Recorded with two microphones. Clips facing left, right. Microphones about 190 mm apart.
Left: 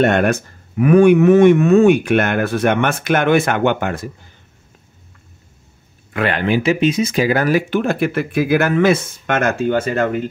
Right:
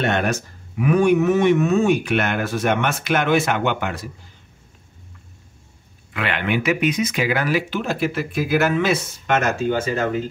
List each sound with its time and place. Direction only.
0.0 s speech: 55° left (ahead or behind)
6.1 s speech: 40° left (ahead or behind); by 10.3 s 60° left (ahead or behind)